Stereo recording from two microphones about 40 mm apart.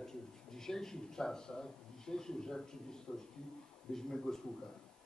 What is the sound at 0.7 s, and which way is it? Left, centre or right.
Speech, centre.